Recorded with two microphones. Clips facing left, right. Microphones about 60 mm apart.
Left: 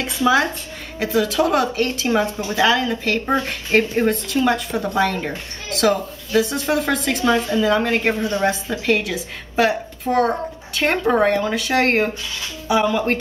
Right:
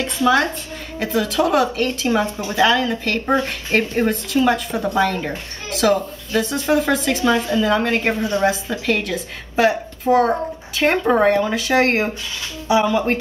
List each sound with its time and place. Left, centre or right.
0.0 s speech: centre